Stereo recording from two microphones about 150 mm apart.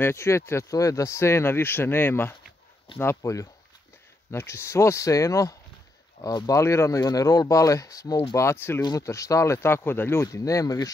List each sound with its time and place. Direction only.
0.0 s speech: 20° left (ahead or behind)